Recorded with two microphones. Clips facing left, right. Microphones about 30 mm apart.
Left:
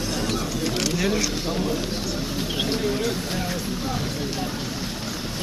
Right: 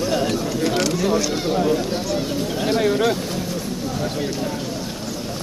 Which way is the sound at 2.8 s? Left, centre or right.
Right.